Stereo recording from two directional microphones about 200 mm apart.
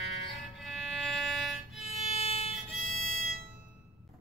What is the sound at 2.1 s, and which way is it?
Music, 30° left (ahead or behind).